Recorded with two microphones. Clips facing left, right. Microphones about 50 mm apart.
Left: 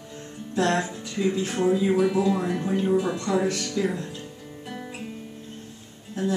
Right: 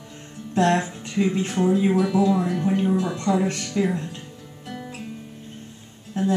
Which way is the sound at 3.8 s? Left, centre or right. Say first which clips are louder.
Right 4 dB; right.